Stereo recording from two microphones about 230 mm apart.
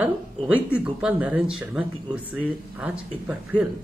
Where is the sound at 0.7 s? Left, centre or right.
Centre.